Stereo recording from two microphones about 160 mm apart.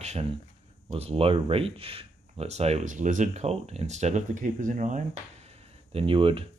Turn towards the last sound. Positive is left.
turn(degrees=-35)  # may be behind; listen again after turning